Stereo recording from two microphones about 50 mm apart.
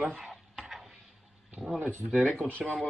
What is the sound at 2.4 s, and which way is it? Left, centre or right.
Speech, left.